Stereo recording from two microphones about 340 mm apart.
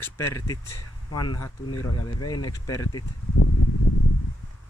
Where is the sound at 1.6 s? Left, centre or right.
Left.